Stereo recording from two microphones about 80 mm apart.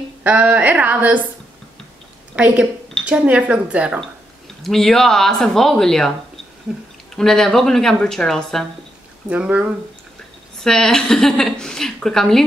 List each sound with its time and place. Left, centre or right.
0.2 s speech: right
2.3 s speech: centre
4.6 s speech: centre
6.7 s speech: centre
7.2 s a woman's voice: centre
9.3 s speech: centre
10.6 s a woman's voice: centre